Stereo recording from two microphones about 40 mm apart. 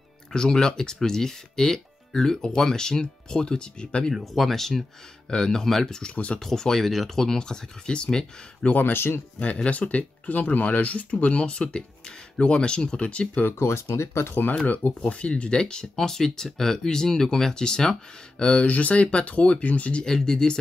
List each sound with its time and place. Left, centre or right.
0.3 s speech: centre
4.1 s speech: centre
5.3 s speech: centre
6.1 s speech: left
6.4 s speech: centre
8.6 s speech: left
8.9 s speech: left
9.4 s speech: left
13.5 s speech: left
14.9 s speech: left
18.4 s speech: left
20.2 s speech: centre